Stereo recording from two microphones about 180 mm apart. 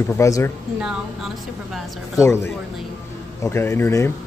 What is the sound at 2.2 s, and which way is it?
Speech, 15° left (ahead or behind).